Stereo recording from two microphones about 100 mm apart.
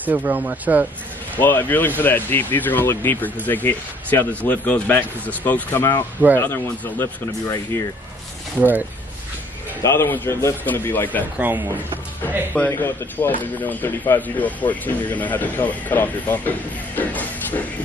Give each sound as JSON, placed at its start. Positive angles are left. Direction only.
{"t": 0.0, "sound": "speech", "side_deg": -15}
{"t": 1.3, "sound": "speech", "side_deg": 20}
{"t": 8.5, "sound": "speech", "side_deg": -20}
{"t": 9.8, "sound": "speech", "side_deg": 25}
{"t": 11.3, "sound": "speech", "side_deg": -20}
{"t": 12.5, "sound": "speech", "side_deg": 20}